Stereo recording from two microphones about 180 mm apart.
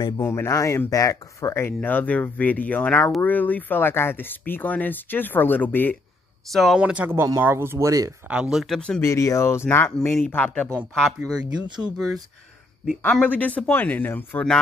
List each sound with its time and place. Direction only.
0.2 s speech: 15° left (ahead or behind); by 8.1 s 20° right (ahead or behind)
8.3 s speech: 5° right (ahead or behind)
9.0 s speech: 15° left (ahead or behind); by 11.4 s 5° right (ahead or behind)
13.0 s speech: 10° left (ahead or behind)